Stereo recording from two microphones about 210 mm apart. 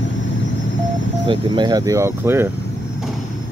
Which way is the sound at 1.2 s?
20° right (ahead or behind).